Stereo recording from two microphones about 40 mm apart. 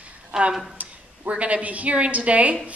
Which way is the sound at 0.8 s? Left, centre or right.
Right.